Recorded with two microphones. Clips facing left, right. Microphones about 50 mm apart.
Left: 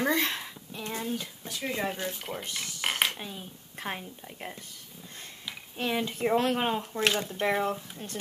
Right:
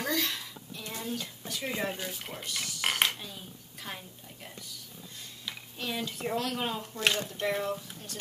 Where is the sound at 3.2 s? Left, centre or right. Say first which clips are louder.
Left 4 dB; left.